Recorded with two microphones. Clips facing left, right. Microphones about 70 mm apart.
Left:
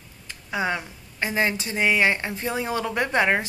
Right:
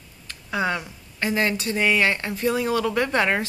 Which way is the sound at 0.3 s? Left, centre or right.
Centre.